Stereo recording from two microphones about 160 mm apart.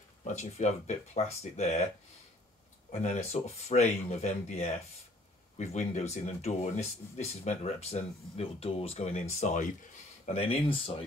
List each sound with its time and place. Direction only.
0.3 s speech: 45° left (ahead or behind)
2.9 s speech: 45° left (ahead or behind)